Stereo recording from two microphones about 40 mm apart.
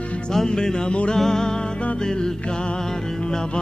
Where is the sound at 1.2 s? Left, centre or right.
Centre.